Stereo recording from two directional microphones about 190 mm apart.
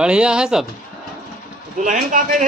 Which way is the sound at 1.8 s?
40° right (ahead or behind).